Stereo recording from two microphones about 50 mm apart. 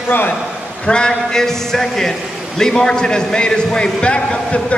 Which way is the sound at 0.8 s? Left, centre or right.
Centre.